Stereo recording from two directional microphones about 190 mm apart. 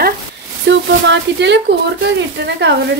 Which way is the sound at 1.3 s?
65° right (ahead or behind).